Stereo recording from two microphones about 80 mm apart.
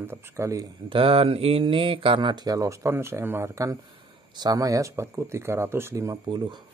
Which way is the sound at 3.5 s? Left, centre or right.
Right.